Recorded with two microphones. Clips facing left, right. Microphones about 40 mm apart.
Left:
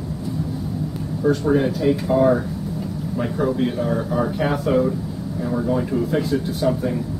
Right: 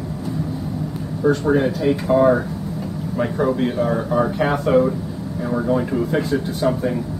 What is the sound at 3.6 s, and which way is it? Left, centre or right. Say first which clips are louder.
Speech: right 2 dB; centre.